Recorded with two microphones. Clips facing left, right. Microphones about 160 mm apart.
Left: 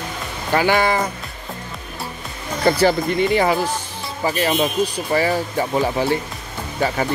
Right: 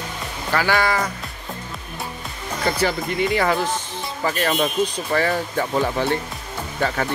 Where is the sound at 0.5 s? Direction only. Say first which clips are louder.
Left 3 dB; 20° left (ahead or behind).